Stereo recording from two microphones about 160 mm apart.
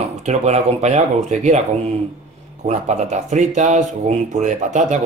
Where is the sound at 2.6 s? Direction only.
45° right (ahead or behind).